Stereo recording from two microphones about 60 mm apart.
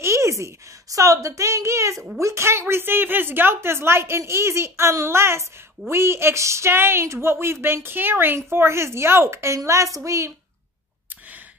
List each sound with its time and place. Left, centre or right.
0.0 s a woman's voice: right
2.7 s a woman's voice: right
9.7 s a woman's voice: right